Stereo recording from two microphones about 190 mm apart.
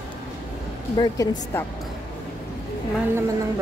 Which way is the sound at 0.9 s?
20° left (ahead or behind).